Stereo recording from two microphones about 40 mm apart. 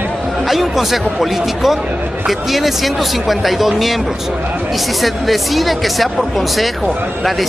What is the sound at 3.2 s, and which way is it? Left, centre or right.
Speech, centre.